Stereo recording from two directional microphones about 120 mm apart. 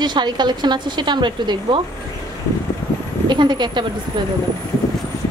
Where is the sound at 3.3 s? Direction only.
35° right (ahead or behind).